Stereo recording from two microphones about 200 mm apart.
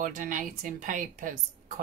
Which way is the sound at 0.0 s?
40° right (ahead or behind).